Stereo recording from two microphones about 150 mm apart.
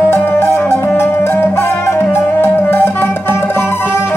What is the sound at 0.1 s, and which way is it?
Music, 15° left (ahead or behind).